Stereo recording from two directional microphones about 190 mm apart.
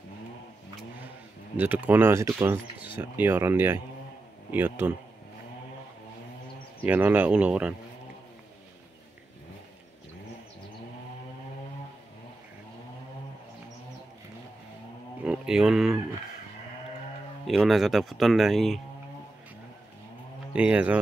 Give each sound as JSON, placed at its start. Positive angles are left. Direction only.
{"t": 1.6, "sound": "speech", "side_deg": -10}
{"t": 6.8, "sound": "speech", "side_deg": -10}
{"t": 15.2, "sound": "speech", "side_deg": -5}
{"t": 17.5, "sound": "speech", "side_deg": 0}
{"t": 20.5, "sound": "speech", "side_deg": -5}